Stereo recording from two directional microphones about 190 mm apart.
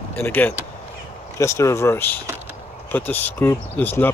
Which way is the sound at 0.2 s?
10° left (ahead or behind).